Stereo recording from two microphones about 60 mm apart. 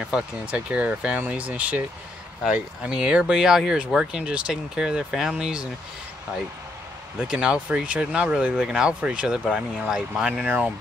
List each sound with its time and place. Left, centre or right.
0.0 s speech: centre
7.2 s speech: centre